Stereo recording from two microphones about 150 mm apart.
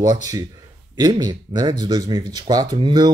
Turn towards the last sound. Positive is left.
turn(degrees=-30)  # may be behind; listen again after turning